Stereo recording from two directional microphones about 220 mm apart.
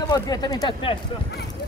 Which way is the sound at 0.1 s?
15° left (ahead or behind).